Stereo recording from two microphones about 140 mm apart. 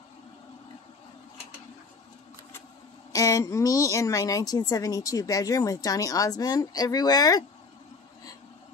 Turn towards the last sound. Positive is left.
turn(degrees=30)  # may be behind; listen again after turning